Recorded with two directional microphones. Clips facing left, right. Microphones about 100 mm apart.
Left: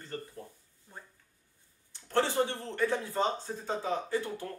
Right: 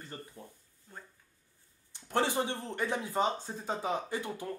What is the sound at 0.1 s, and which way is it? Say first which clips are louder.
Speech: left 7 dB; 15° right (ahead or behind).